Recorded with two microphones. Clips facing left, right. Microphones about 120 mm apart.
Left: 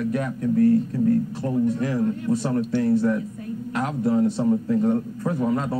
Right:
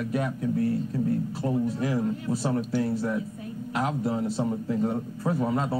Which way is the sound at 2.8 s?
20° right (ahead or behind).